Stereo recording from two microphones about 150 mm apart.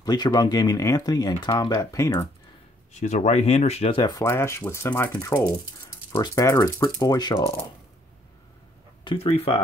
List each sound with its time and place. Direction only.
0.0 s speech: 25° left (ahead or behind)
2.9 s speech: 50° left (ahead or behind)
4.0 s speech: 25° left (ahead or behind)
9.0 s speech: 35° left (ahead or behind)